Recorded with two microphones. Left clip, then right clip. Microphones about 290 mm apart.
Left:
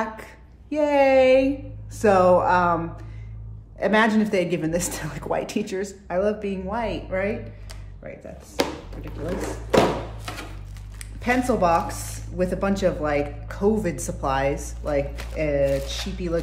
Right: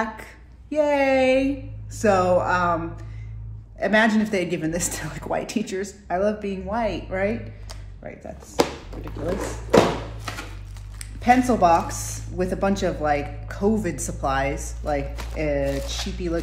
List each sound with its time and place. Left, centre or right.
0.0 s speech: centre
9.7 s tap: centre
11.1 s speech: centre